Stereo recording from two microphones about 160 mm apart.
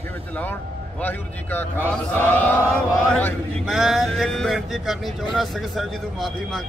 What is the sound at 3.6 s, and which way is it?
A man's voice, centre (ahead or behind).